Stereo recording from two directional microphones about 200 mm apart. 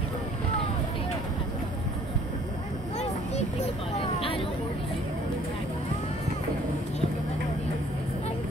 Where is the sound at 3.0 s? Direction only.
30° left (ahead or behind).